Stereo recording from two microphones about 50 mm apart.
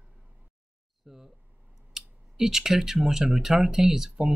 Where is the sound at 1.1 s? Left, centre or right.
Centre.